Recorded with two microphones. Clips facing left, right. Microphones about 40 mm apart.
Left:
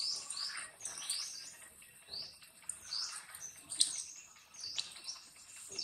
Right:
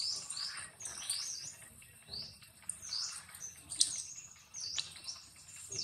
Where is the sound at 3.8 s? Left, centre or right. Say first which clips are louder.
Even; left.